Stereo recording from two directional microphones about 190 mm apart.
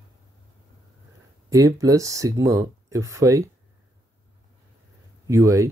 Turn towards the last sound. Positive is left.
turn(degrees=-15)  # may be behind; listen again after turning